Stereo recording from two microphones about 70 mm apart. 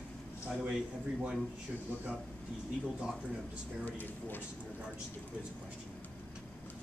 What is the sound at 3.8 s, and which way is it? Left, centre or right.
Speech, left.